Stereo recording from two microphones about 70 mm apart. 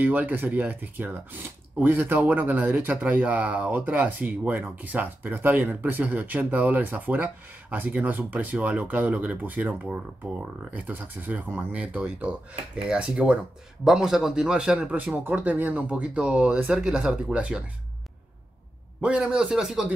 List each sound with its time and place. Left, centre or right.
0.0 s speech: right
18.9 s speech: centre